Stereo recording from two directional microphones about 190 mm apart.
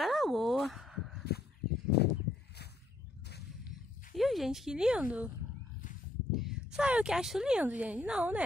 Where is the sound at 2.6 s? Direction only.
60° left (ahead or behind).